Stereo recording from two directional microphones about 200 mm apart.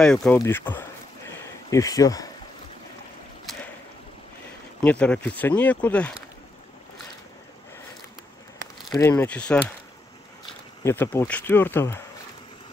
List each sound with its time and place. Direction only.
0.0 s speech: 5° left (ahead or behind)
4.8 s speech: 5° left (ahead or behind)
8.9 s speech: 15° left (ahead or behind)